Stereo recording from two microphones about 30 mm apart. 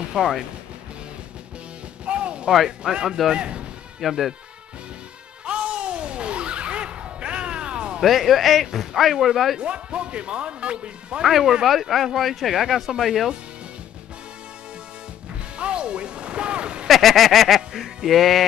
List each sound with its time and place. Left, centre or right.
0.2 s speech: right
2.0 s music: right
2.8 s speech: right
3.3 s speech: right
4.0 s speech: centre
5.4 s music: right
8.0 s speech: centre
9.6 s speech: right
11.2 s speech: centre
15.5 s music: right
16.8 s speech: centre
17.6 s music: centre